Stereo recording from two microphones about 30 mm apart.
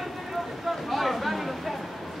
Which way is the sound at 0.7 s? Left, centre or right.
Centre.